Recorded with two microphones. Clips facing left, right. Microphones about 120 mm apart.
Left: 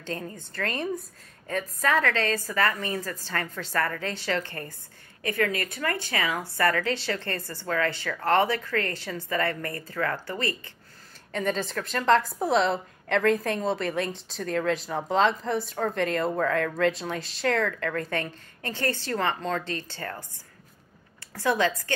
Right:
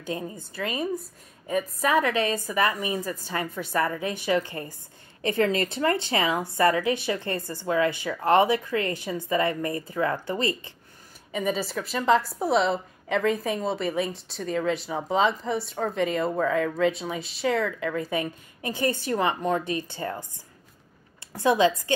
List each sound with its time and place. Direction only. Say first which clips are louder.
0.0 s a woman's voice: right 2 dB; 10° right (ahead or behind)
5.2 s a woman's voice: right 4 dB; 25° right (ahead or behind)
11.3 s a woman's voice: right 1 dB; 5° right (ahead or behind)
21.3 s a woman's voice: right 4 dB; 20° right (ahead or behind)